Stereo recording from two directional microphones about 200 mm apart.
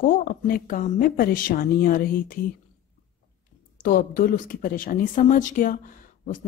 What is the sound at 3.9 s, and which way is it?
Speech, 40° left (ahead or behind).